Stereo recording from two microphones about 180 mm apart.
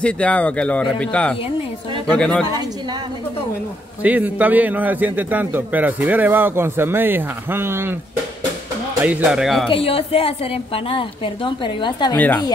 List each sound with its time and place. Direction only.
0.0 s speech: 5° left (ahead or behind)
4.0 s a man's voice: 10° right (ahead or behind)
9.0 s speech: 10° right (ahead or behind)
9.7 s a woman's voice: 30° left (ahead or behind)